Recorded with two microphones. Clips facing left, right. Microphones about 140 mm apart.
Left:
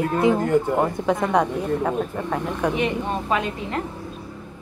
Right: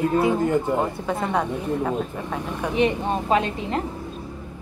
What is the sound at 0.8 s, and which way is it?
Speech, 15° left (ahead or behind).